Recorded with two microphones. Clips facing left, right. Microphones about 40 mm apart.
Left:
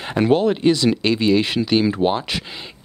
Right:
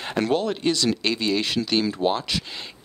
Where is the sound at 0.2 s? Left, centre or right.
Centre.